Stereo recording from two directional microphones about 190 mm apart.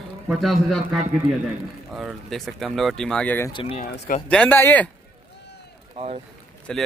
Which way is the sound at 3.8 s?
45° left (ahead or behind).